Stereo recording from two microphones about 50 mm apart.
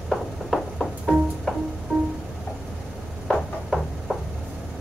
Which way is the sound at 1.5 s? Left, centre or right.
Centre.